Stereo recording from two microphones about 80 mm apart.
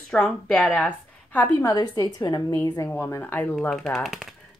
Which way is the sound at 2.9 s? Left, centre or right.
Left.